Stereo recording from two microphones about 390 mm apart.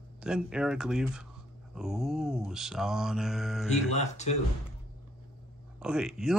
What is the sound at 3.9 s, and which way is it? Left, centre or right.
Speech, centre.